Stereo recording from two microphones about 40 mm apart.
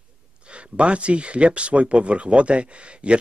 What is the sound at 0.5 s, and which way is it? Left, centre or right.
Speech, right.